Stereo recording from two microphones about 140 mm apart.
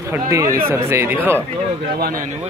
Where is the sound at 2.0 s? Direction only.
90° right.